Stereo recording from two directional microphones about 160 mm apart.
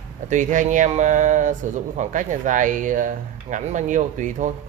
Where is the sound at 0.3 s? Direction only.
50° right (ahead or behind).